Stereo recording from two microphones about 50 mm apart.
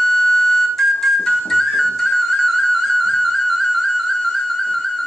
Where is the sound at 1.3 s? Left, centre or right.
Centre.